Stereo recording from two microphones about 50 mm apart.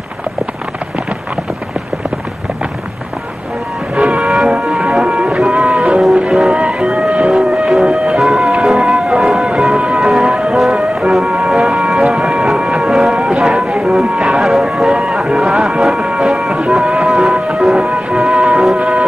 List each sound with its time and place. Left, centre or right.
3.9 s vehicle: centre
4.6 s music: centre
6.5 s music: centre
18.8 s music: centre